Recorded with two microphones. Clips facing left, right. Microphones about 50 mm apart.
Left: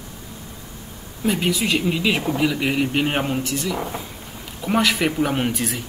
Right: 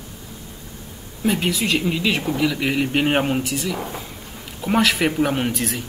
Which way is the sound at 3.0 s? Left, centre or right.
Centre.